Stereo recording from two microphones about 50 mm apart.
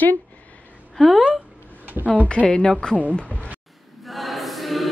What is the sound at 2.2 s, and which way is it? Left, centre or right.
Speech, left.